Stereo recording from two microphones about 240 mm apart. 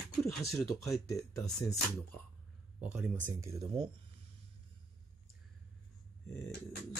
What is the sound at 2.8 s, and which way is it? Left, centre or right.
Speech, centre.